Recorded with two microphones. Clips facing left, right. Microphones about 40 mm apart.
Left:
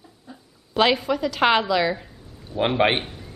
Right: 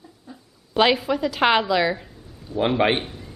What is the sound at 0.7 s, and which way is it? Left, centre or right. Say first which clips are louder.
A woman's voice: right 1 dB; centre.